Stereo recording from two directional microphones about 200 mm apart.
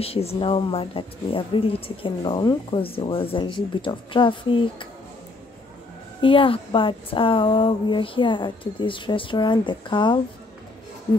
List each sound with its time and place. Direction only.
0.0 s speech: 30° left (ahead or behind)
6.2 s speech: 25° left (ahead or behind)